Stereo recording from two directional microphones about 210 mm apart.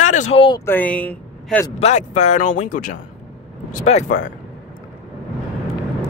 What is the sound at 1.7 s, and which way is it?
Speech, 35° left (ahead or behind).